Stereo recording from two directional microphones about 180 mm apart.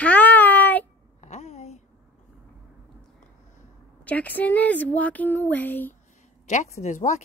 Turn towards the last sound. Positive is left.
turn(degrees=45)  # may be behind; listen again after turning